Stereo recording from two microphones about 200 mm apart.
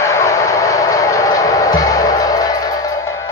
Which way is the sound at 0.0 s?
15° left (ahead or behind).